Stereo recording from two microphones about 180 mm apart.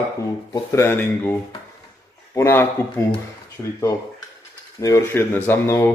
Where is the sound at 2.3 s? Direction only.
15° left (ahead or behind).